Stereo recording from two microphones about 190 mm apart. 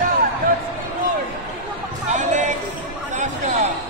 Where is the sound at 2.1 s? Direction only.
40° right (ahead or behind).